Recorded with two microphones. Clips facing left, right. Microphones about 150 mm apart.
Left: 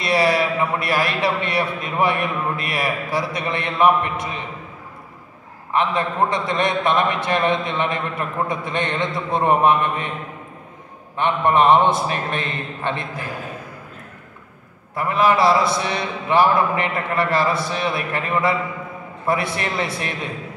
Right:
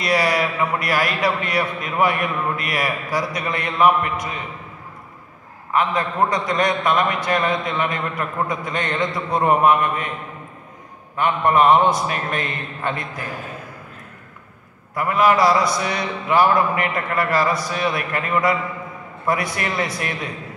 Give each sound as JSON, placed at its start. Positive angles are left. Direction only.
{"t": 0.0, "sound": "a man's voice", "side_deg": 25}
{"t": 5.8, "sound": "a man's voice", "side_deg": 25}
{"t": 11.1, "sound": "a man's voice", "side_deg": 25}
{"t": 15.0, "sound": "a man's voice", "side_deg": 25}